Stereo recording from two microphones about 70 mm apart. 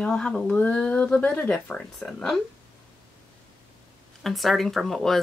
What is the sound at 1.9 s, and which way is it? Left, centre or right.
Speech, centre.